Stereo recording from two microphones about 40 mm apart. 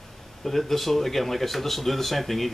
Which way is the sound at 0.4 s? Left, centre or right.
Centre.